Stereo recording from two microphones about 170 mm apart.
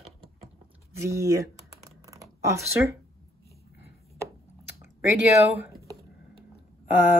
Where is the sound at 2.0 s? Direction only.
20° right (ahead or behind).